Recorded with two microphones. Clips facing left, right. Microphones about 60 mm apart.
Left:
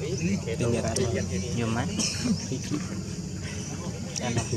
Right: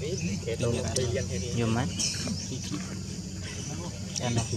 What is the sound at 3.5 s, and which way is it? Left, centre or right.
Vehicle, centre.